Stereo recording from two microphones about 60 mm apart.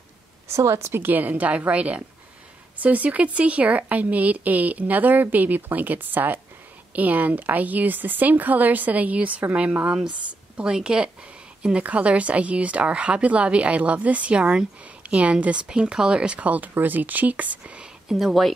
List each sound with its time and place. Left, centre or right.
0.5 s speech: right
1.0 s a woman's voice: right; by 16.3 s centre
16.3 s speech: right
18.0 s speech: centre